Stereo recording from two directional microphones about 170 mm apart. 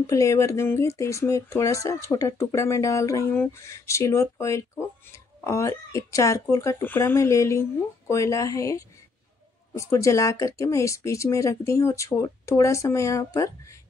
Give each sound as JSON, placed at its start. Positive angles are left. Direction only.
{"t": 0.0, "sound": "speech", "side_deg": 20}